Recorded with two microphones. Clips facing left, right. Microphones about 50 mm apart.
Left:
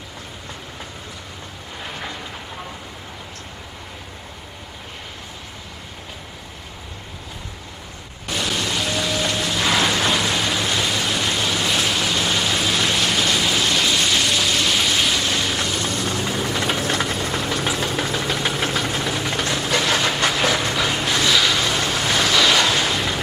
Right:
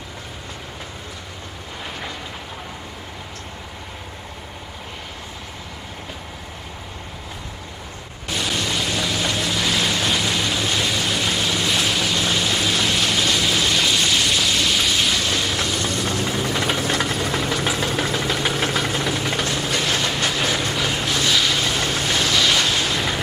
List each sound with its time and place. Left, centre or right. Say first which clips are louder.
8.3 s music: even; centre
9.8 s a sound: left 2 dB; centre
19.8 s train: left 4 dB; centre
20.5 s vehicle: left 1 dB; centre
22.5 s a sound: left 2 dB; centre
22.9 s vehicle: even; centre